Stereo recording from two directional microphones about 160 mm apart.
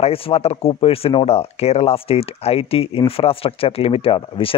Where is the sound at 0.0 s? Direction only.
40° left (ahead or behind).